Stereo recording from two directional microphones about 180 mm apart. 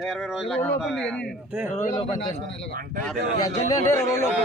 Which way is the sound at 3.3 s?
20° left (ahead or behind).